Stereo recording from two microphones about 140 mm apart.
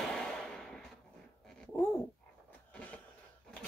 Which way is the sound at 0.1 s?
5° left (ahead or behind).